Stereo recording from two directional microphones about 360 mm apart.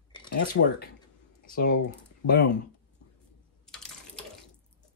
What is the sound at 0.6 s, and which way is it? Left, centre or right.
Speech, left.